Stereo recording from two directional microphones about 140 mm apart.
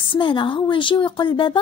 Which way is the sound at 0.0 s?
35° left (ahead or behind).